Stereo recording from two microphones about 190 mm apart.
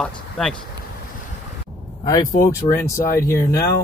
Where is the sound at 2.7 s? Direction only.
25° left (ahead or behind).